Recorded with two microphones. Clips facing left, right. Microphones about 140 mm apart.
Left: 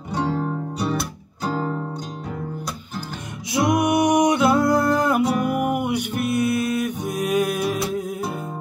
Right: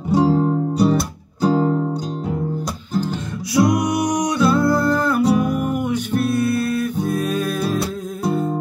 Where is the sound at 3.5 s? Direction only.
25° left (ahead or behind).